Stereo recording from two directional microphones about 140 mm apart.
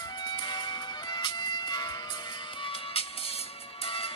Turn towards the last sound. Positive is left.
turn(degrees=45)  # may be behind; listen again after turning